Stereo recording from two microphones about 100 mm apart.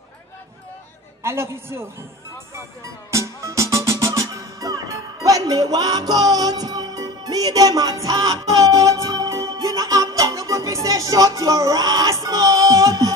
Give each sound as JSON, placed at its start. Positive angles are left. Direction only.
{"t": 1.2, "sound": "a man's voice", "side_deg": -25}
{"t": 3.1, "sound": "music", "side_deg": -30}